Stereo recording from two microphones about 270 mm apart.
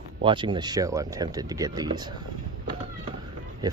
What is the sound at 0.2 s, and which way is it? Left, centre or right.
Speech, centre.